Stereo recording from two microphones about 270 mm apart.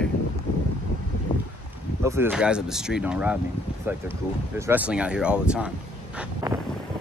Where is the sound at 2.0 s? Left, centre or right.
Centre.